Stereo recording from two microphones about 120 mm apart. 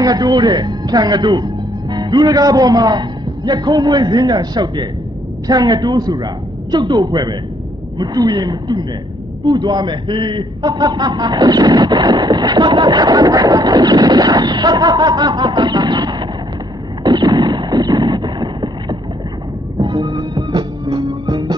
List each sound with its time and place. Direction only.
0.0 s a man's voice: 35° right (ahead or behind)
17.0 s boat: 35° right (ahead or behind)
19.8 s music: 40° right (ahead or behind)